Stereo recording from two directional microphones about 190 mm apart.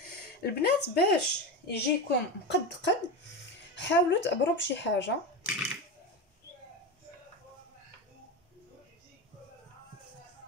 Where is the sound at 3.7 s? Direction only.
70° left (ahead or behind).